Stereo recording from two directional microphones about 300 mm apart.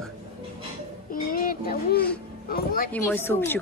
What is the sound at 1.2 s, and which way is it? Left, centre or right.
Speech, left.